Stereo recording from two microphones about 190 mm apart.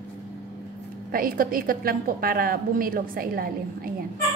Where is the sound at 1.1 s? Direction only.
50° right (ahead or behind).